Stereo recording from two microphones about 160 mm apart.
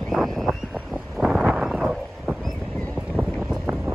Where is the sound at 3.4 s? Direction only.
10° right (ahead or behind).